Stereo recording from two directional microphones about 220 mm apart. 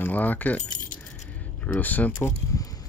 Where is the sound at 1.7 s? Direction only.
10° left (ahead or behind).